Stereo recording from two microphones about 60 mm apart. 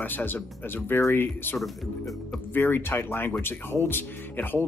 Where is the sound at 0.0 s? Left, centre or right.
Left.